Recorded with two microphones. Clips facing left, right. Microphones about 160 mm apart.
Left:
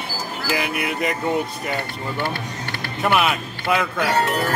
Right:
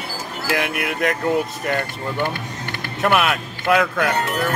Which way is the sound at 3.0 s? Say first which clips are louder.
Right 1 dB; centre (ahead or behind).